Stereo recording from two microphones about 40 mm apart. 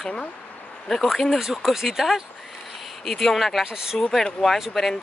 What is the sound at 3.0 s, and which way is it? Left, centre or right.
Speech, centre.